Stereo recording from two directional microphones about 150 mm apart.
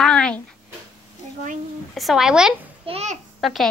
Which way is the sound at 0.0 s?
5° left (ahead or behind).